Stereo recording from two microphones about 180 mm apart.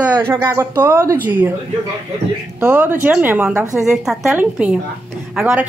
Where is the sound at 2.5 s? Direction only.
10° right (ahead or behind).